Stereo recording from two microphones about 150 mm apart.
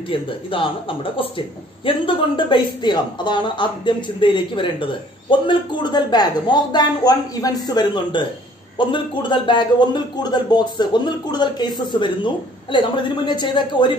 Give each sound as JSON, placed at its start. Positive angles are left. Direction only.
{"t": 0.1, "sound": "a man's voice", "side_deg": 35}